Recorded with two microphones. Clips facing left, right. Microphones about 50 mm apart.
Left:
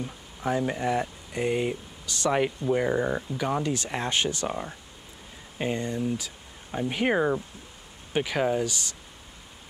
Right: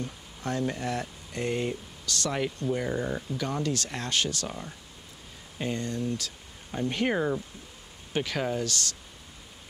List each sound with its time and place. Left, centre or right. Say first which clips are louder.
0.0 s speech: left 4 dB; centre